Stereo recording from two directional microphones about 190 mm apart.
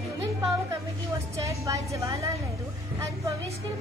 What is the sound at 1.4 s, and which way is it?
Speech, 15° right (ahead or behind).